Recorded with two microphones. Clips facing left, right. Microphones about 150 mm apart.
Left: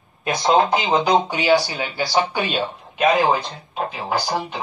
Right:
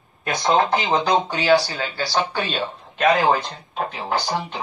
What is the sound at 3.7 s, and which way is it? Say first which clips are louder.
Speech: left 1 dB; 5° left (ahead or behind).